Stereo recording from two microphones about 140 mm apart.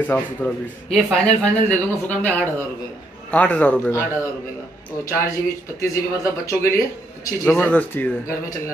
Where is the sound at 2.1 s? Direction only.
10° left (ahead or behind).